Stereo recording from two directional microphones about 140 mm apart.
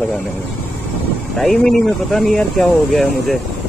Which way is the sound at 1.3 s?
Centre (ahead or behind).